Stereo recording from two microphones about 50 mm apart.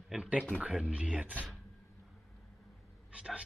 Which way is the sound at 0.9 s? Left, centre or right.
Right.